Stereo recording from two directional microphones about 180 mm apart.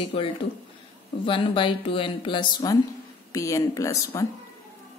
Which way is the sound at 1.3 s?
30° left (ahead or behind).